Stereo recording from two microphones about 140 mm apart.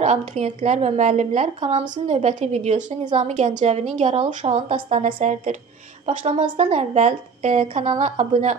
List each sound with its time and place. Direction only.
0.0 s a woman's voice: 55° right (ahead or behind)